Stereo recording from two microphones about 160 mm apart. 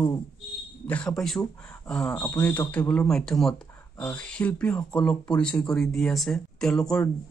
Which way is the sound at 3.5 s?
20° left (ahead or behind).